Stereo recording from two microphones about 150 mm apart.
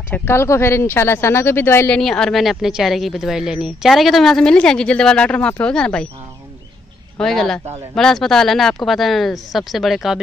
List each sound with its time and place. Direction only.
0.1 s speech: 15° left (ahead or behind)
2.0 s speech: 5° left (ahead or behind)
7.2 s speech: 5° left (ahead or behind)